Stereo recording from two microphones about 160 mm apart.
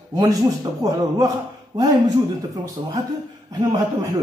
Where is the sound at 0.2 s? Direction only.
25° right (ahead or behind).